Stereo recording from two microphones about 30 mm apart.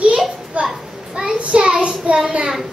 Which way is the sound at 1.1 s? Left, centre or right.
Right.